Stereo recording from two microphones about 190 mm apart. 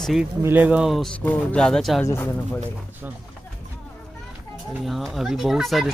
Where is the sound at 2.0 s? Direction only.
10° left (ahead or behind).